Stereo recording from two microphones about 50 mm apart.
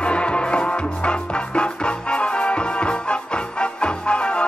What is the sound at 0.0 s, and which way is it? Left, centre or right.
Music, left.